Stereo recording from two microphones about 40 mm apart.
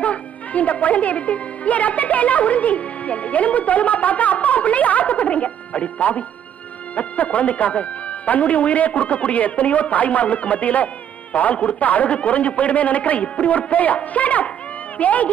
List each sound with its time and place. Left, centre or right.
0.0 s speech: left